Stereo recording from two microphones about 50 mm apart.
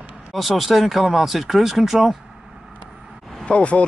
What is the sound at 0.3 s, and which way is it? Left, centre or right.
Speech, centre.